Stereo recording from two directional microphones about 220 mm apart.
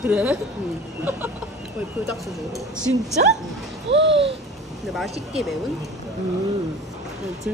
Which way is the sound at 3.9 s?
55° right (ahead or behind).